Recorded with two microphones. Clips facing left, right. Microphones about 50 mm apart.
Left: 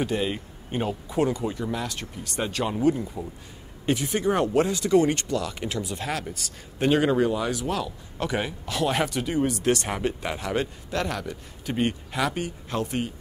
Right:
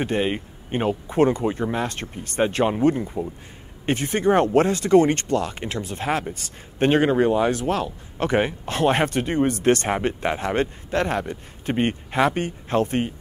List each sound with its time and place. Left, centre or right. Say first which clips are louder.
0.0 s speech: right 3 dB; right
3.8 s speech: right 3 dB; right